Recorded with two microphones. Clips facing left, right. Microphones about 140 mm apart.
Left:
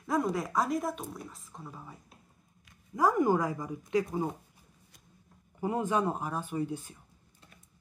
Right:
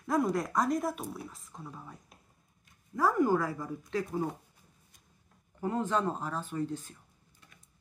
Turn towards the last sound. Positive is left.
turn(degrees=10)  # may be behind; listen again after turning